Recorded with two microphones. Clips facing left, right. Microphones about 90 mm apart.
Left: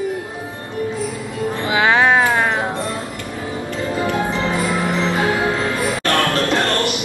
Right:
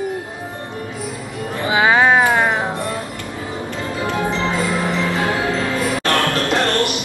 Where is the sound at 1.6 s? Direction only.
15° right (ahead or behind).